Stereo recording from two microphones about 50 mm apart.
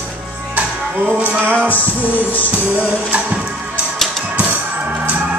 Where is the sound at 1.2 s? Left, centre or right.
Right.